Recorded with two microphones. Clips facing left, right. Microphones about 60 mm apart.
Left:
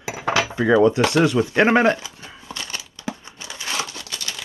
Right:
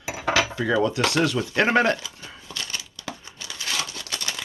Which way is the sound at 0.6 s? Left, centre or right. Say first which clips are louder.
Left 6 dB; left.